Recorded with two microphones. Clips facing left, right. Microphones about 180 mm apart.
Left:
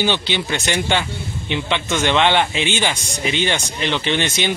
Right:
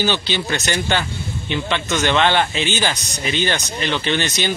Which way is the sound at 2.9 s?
25° left (ahead or behind).